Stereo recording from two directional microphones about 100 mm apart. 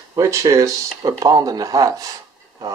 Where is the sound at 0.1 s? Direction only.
35° right (ahead or behind).